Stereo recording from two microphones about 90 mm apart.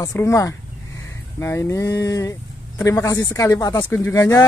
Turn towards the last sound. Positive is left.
turn(degrees=35)  # may be behind; listen again after turning